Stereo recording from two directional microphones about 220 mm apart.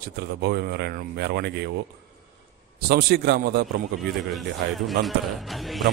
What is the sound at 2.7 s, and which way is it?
Speech, 45° right (ahead or behind).